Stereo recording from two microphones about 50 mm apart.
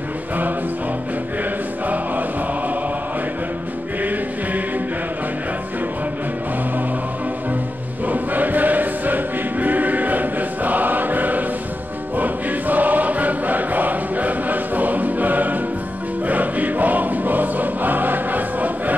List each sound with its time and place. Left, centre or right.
8.1 s choir: right